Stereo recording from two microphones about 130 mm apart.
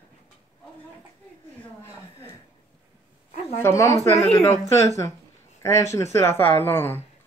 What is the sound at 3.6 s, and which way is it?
Speech, 25° left (ahead or behind).